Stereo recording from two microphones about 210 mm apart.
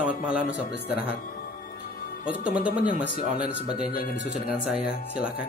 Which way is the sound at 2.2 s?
5° right (ahead or behind).